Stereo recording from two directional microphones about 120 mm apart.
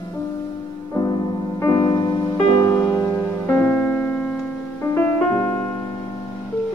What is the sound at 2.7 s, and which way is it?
Music, 15° left (ahead or behind).